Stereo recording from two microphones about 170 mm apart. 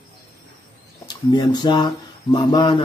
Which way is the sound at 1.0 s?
25° left (ahead or behind).